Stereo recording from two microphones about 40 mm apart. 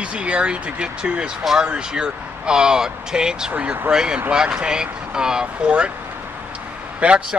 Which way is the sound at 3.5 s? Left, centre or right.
Right.